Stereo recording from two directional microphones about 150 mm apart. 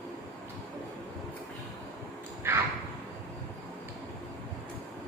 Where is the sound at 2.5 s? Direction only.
20° right (ahead or behind).